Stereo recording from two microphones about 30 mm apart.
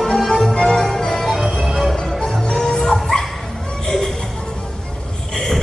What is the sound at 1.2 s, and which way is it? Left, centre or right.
Music, centre.